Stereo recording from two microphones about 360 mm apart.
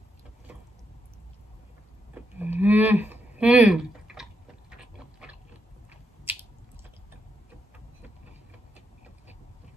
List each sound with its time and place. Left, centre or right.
2.1 s livestock: centre